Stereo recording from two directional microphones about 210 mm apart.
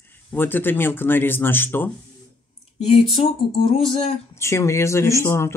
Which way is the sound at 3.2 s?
30° left (ahead or behind).